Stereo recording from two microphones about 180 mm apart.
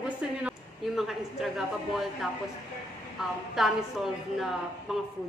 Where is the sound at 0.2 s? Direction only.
5° right (ahead or behind).